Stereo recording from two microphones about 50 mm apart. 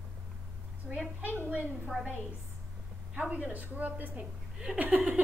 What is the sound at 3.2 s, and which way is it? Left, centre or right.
A woman's voice, right.